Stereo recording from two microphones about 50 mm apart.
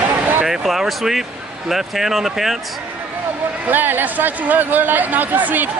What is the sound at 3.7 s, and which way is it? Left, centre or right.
Speech, right.